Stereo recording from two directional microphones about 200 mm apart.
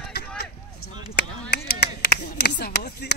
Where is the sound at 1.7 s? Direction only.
55° left (ahead or behind).